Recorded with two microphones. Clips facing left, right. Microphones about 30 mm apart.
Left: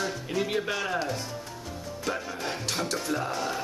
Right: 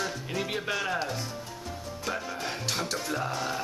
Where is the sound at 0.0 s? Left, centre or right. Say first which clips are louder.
Left 2 dB; centre.